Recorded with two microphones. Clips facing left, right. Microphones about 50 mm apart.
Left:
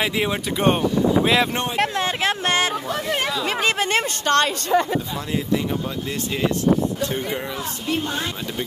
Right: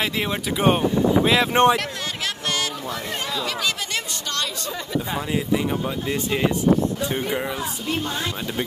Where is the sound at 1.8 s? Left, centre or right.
Left.